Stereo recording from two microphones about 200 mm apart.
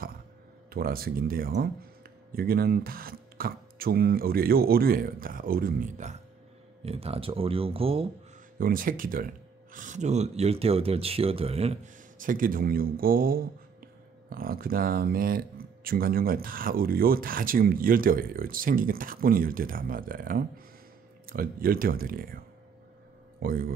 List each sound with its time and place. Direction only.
0.7 s speech: 50° right (ahead or behind); by 8.1 s 30° right (ahead or behind)
8.5 s speech: 45° right (ahead or behind)
23.4 s speech: 45° right (ahead or behind)